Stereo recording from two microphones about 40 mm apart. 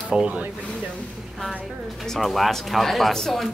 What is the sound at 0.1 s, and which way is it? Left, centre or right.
Speech, right.